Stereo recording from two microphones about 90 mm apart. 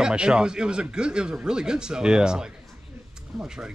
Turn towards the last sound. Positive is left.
turn(degrees=-5)  # may be behind; listen again after turning